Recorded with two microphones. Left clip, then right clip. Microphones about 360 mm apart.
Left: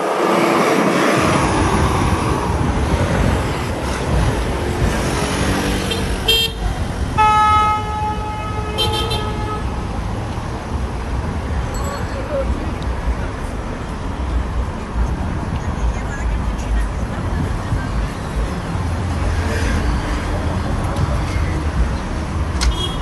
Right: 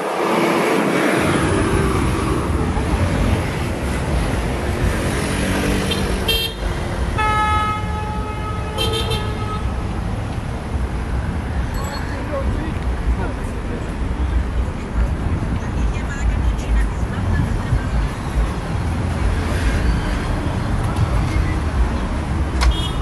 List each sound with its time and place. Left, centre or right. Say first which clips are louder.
0.1 s vehicle: left 2 dB; left
5.0 s vehicle: left 2 dB; centre
6.2 s vehicle: left 7 dB; left